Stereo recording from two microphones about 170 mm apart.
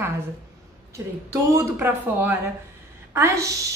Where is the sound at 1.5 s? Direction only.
10° right (ahead or behind).